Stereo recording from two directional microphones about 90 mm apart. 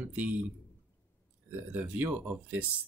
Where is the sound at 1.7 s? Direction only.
20° right (ahead or behind).